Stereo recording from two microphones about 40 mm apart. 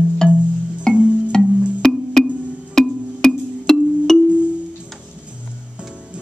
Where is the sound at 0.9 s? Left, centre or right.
Right.